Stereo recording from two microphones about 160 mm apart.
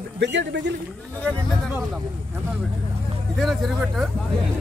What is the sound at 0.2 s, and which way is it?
Speech, 90° right.